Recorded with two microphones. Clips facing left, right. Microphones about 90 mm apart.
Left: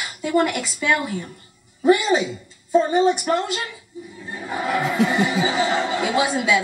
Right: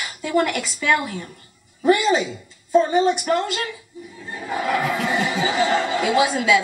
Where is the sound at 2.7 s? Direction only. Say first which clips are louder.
Even; 15° left (ahead or behind).